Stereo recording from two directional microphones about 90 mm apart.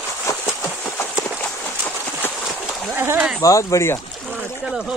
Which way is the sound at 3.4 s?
40° left (ahead or behind).